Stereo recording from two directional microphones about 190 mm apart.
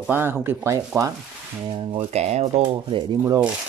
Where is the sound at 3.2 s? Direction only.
15° right (ahead or behind).